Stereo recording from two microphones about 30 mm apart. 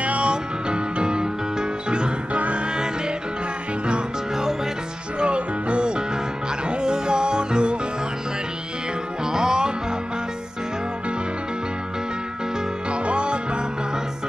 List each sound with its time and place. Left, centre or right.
0.0 s music: right
0.3 s music: right
2.3 s music: right
5.2 s music: right
9.2 s music: right
12.9 s music: right